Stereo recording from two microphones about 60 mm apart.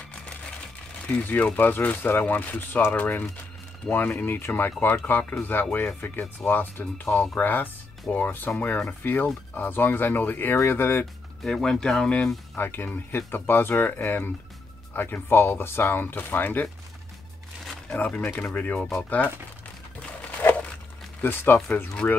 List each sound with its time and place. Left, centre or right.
1.2 s speech: left
11.4 s speech: centre
12.5 s speech: left
17.8 s speech: left
18.8 s speech: centre
21.2 s speech: left